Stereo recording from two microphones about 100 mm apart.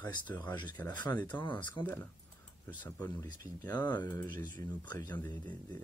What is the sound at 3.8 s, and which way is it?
Speech, 20° left (ahead or behind).